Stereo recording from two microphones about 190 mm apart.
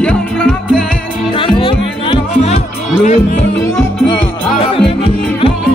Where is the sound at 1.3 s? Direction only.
25° left (ahead or behind).